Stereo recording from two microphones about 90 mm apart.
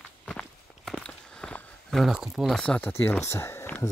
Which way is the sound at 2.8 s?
25° left (ahead or behind).